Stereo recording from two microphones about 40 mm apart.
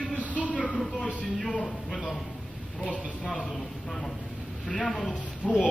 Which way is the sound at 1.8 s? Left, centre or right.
Centre.